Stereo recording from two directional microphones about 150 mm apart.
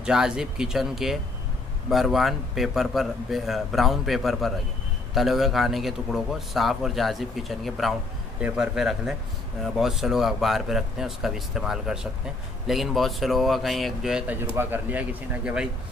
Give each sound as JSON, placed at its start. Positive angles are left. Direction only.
{"t": 0.0, "sound": "a man's voice", "side_deg": -5}